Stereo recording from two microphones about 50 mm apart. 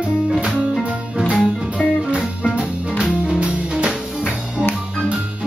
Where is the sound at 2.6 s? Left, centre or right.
Centre.